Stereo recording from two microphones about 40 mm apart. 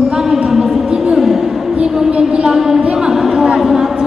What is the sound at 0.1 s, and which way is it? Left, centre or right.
Music, centre.